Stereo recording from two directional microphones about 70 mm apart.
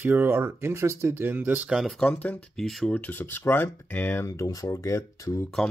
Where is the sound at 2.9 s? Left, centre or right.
Left.